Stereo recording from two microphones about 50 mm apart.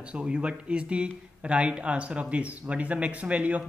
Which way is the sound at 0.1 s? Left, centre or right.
Right.